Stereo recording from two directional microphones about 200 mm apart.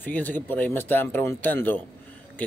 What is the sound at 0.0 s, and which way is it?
Speech, 10° left (ahead or behind).